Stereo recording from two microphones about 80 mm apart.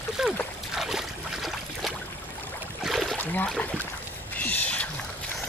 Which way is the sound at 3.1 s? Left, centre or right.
Left.